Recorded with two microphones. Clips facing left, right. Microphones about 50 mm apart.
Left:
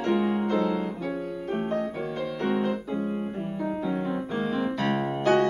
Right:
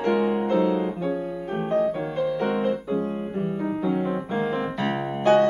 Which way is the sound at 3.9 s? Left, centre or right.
Centre.